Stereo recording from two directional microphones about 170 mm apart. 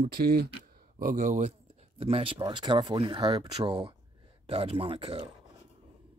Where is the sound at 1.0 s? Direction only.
50° right (ahead or behind).